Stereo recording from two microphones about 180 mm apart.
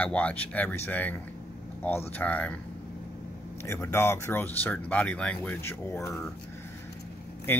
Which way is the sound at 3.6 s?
15° left (ahead or behind).